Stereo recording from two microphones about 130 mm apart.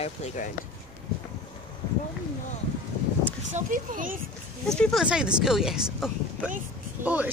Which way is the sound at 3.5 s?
90° right.